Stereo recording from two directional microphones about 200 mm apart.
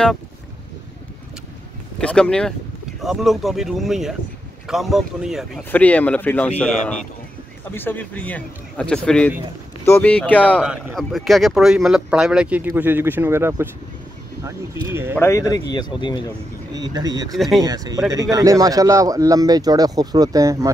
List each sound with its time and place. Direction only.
2.0 s speech: 5° left (ahead or behind)
7.6 s speech: 10° left (ahead or behind)
10.6 s speech: 5° right (ahead or behind)
15.1 s speech: 15° left (ahead or behind)
16.7 s speech: 20° right (ahead or behind)
17.4 s speech: centre (ahead or behind)
17.6 s speech: 15° right (ahead or behind)